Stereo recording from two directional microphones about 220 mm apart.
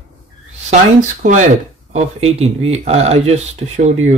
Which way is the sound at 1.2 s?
35° right (ahead or behind).